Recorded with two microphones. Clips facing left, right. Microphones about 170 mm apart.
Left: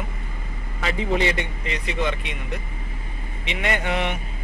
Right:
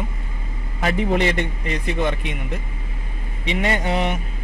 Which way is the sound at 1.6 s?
45° right (ahead or behind).